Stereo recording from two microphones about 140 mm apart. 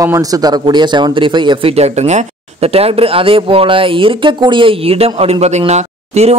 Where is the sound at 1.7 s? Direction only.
50° right (ahead or behind).